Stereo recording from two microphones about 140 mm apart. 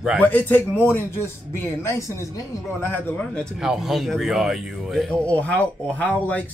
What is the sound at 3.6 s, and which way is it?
Speech, 5° right (ahead or behind).